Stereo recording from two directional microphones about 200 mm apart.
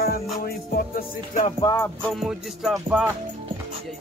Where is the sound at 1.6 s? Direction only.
20° left (ahead or behind).